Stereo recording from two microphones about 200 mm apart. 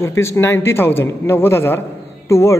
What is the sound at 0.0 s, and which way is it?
A man's voice, 15° left (ahead or behind).